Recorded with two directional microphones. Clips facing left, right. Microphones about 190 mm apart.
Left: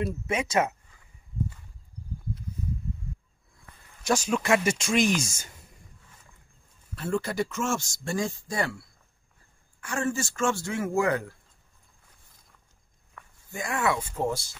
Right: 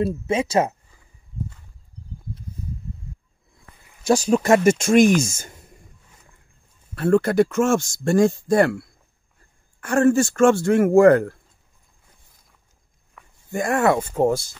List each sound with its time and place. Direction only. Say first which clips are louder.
0.0 s speech: right 7 dB; 30° right (ahead or behind)
4.0 s speech: right 8 dB; 35° right (ahead or behind); by 5.5 s 50° right (ahead or behind)
7.0 s speech: right 11 dB; 60° right (ahead or behind)
13.5 s speech: right 9 dB; 50° right (ahead or behind)